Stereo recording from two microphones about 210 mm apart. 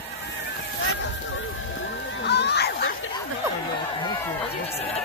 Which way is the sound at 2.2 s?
55° left (ahead or behind).